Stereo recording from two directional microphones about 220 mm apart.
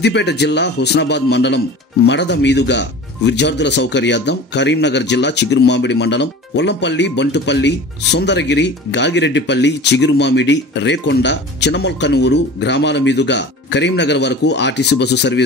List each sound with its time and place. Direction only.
0.0 s speech: 50° left (ahead or behind)